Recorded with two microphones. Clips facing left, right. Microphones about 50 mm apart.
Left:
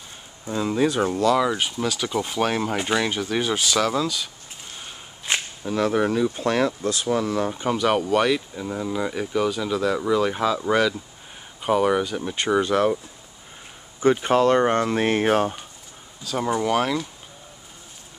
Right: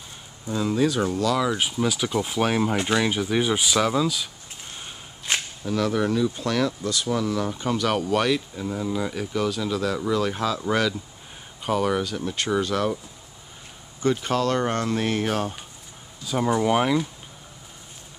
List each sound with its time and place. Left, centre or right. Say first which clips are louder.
0.6 s speech: left 1 dB; centre
1.6 s speech: right 1 dB; centre
5.2 s a sound: left 1 dB; centre
5.8 s speech: left 2 dB; left
7.5 s speech: left 3 dB; centre
14.0 s speech: left 5 dB; left
16.3 s speech: right 1 dB; centre